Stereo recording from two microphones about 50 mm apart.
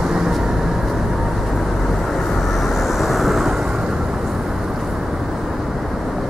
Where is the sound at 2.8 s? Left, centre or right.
Centre.